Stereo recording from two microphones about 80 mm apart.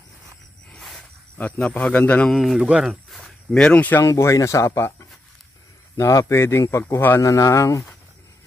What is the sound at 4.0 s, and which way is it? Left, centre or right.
Speech, left.